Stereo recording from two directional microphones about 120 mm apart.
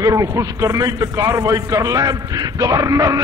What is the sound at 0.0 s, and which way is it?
A man's voice, 25° right (ahead or behind).